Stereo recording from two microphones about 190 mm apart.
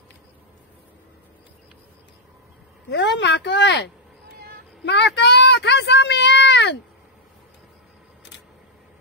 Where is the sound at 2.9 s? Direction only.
65° left (ahead or behind).